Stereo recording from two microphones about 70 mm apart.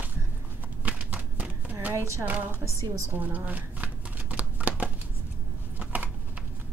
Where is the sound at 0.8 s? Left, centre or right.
Centre.